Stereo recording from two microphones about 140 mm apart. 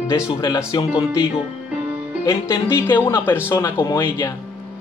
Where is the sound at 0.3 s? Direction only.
30° left (ahead or behind).